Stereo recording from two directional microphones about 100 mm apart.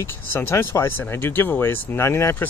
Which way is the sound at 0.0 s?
25° left (ahead or behind).